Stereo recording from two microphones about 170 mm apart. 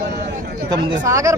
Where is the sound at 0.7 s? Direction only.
20° right (ahead or behind).